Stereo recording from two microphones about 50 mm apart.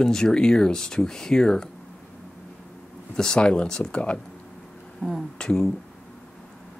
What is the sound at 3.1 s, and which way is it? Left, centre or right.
Speech, centre.